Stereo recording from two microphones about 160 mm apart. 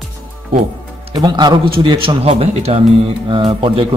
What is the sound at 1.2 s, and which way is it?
A man's voice, 25° right (ahead or behind).